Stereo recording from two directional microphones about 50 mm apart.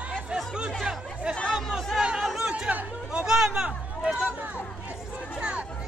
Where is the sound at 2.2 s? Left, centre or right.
Centre.